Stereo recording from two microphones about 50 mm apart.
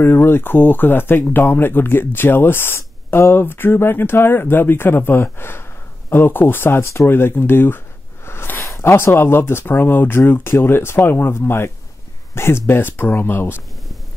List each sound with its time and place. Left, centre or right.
0.0 s speech: left
7.1 s speech: left
8.3 s a sound: left
8.8 s speech: left